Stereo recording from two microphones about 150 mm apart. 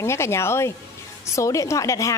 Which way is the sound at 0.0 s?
20° left (ahead or behind).